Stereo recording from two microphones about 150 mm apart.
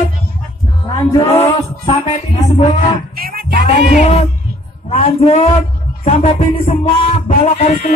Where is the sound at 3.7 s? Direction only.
50° left (ahead or behind).